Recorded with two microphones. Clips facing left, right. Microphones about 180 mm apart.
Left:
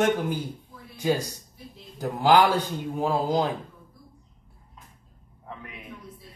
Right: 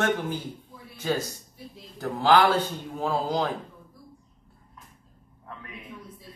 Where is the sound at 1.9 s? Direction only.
15° left (ahead or behind).